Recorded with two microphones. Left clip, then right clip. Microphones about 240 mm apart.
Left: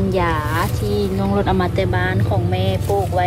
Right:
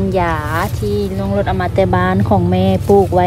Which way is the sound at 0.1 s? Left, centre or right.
Centre.